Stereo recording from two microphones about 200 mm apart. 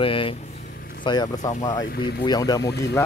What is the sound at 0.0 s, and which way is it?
Speech, 25° left (ahead or behind).